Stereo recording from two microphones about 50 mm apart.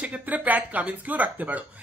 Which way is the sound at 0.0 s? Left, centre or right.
Right.